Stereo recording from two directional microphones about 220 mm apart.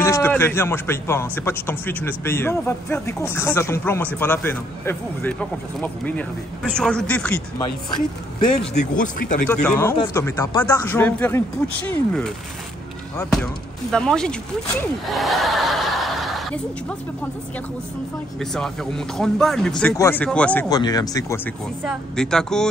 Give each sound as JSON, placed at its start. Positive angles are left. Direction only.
{"t": 0.0, "sound": "a man's voice", "side_deg": 10}
{"t": 8.7, "sound": "speech", "side_deg": 35}
{"t": 9.5, "sound": "a man's voice", "side_deg": 5}
{"t": 18.4, "sound": "a man's voice", "side_deg": 0}
{"t": 20.7, "sound": "a man's voice", "side_deg": 15}
{"t": 21.8, "sound": "speech", "side_deg": 5}